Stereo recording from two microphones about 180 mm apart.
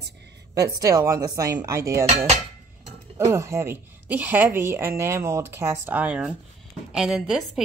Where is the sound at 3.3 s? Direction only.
15° right (ahead or behind).